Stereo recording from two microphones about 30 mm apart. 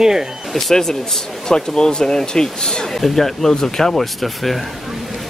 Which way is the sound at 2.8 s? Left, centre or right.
Centre.